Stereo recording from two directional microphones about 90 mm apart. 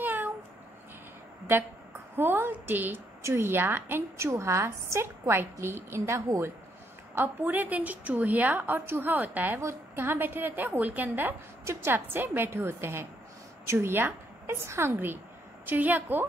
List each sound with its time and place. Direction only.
0.0 s cat: 20° right (ahead or behind)
2.1 s a woman's voice: 25° right (ahead or behind)
7.2 s a woman's voice: 20° right (ahead or behind)